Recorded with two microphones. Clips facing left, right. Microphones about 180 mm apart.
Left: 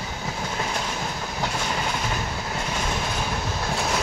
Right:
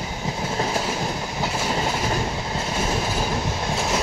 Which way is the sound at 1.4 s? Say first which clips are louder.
Right 2 dB; 10° right (ahead or behind).